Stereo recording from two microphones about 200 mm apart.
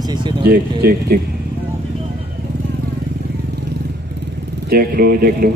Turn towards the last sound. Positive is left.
turn(degrees=-50)  # may be behind; listen again after turning